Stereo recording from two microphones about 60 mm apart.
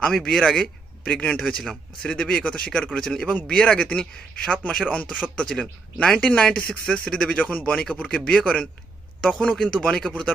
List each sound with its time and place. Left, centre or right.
0.0 s a man's voice: centre
1.4 s speech: centre